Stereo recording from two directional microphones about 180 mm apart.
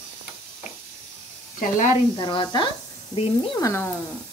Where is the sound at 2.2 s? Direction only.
25° left (ahead or behind).